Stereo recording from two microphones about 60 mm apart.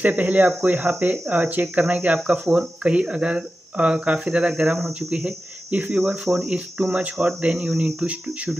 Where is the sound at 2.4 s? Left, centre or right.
Centre.